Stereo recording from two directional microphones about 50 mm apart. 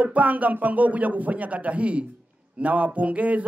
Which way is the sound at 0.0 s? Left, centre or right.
Right.